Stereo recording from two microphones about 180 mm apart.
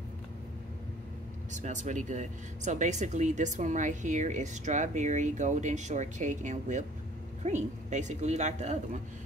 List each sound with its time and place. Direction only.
1.5 s speech: 40° right (ahead or behind)